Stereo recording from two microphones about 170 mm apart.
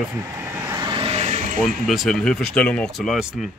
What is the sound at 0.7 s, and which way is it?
Vehicle, 25° right (ahead or behind).